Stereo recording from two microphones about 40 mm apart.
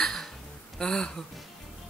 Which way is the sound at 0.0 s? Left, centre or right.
Centre.